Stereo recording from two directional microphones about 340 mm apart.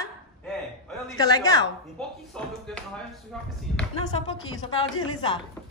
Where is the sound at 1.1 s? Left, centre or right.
Centre.